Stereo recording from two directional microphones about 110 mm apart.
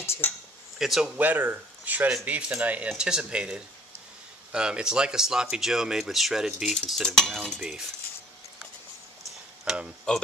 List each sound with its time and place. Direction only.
0.0 s a sound: 25° left (ahead or behind)
0.7 s speech: 5° right (ahead or behind)
1.1 s speech: 15° right (ahead or behind)
9.7 s speech: 10° right (ahead or behind)